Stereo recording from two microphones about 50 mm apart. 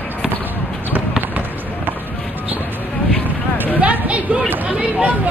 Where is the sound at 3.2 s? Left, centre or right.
Right.